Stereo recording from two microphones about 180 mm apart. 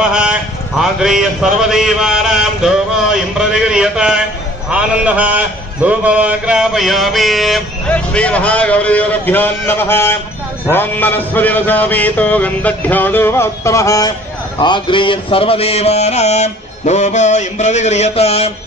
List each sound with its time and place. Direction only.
0.1 s a man's voice: 5° right (ahead or behind); by 10.1 s 15° left (ahead or behind)
10.7 s a sound: 10° left (ahead or behind)
14.6 s mantra: 25° left (ahead or behind)